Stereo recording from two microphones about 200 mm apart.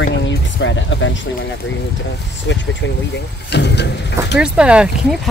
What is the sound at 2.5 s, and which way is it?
Speech, 65° left (ahead or behind).